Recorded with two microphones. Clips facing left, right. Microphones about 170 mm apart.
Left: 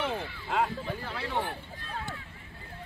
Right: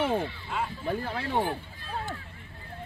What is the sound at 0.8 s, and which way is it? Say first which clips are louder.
Speech: right 5 dB; 50° right (ahead or behind).